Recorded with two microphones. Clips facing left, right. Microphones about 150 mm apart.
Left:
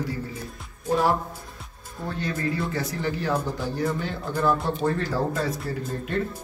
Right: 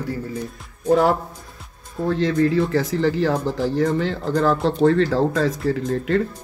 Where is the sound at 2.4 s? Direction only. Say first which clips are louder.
Right 9 dB; 90° right.